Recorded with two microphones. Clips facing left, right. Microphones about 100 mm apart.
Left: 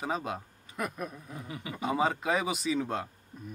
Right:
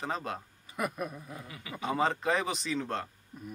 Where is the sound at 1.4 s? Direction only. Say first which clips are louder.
Left 6 dB; 30° left (ahead or behind).